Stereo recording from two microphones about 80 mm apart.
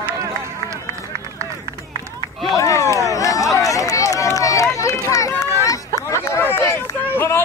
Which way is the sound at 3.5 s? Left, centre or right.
Left.